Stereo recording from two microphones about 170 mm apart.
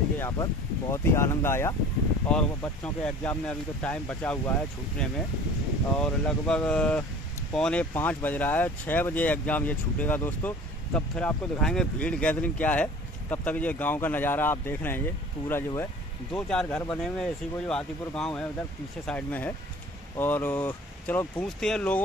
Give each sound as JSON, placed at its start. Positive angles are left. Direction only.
{"t": 0.2, "sound": "speech", "side_deg": 20}